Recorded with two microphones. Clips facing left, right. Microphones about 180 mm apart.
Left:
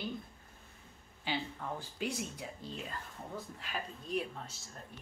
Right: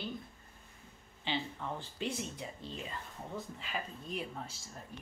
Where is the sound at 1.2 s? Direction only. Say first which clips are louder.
Even; 5° left (ahead or behind).